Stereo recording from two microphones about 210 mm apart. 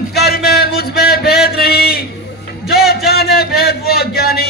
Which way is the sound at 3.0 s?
50° left (ahead or behind).